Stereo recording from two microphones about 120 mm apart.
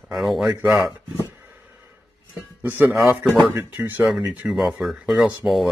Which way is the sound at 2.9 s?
Centre (ahead or behind).